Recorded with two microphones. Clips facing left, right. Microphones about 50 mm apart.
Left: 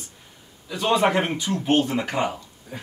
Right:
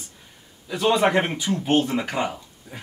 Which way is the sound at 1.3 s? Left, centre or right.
Centre.